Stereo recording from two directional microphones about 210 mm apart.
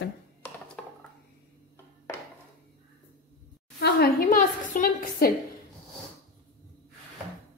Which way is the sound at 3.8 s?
45° left (ahead or behind).